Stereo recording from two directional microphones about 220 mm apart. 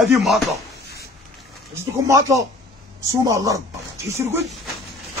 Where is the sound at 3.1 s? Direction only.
15° right (ahead or behind).